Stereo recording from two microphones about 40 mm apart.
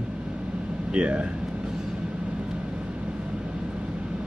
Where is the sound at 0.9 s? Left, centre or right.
Right.